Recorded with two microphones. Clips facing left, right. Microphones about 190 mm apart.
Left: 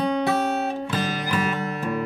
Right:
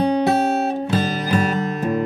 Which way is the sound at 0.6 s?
35° right (ahead or behind).